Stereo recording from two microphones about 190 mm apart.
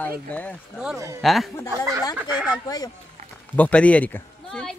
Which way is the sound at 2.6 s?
20° left (ahead or behind).